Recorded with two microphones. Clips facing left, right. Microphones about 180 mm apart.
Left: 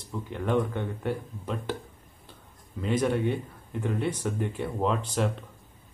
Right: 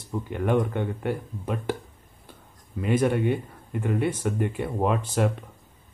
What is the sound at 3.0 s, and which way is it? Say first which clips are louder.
Speech: right 2 dB; 10° right (ahead or behind).